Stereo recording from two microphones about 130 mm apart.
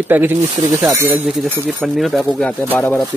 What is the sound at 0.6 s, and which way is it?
Speech, 25° right (ahead or behind).